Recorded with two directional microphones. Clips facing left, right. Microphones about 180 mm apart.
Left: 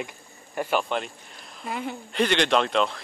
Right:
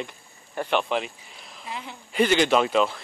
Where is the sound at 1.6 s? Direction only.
55° left (ahead or behind).